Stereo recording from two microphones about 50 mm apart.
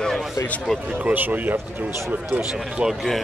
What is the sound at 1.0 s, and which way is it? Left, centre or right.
Speech, right.